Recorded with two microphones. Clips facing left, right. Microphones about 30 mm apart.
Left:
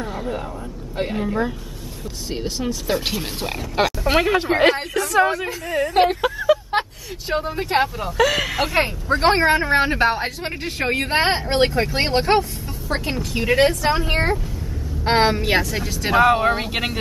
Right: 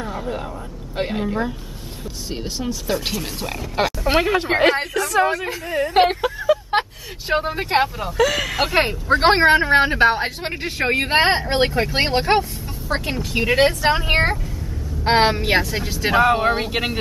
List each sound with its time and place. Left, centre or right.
0.0 s a sound: centre
1.1 s speech: centre
6.2 s vehicle: centre
7.2 s speech: right
7.7 s speech: centre
8.2 s speech: centre
8.7 s speech: right
9.8 s speech: centre
13.3 s speech: centre; by 14.3 s right
15.0 s speech: centre
16.2 s speech: centre